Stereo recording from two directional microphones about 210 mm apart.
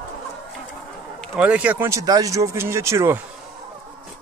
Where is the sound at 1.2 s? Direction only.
5° right (ahead or behind).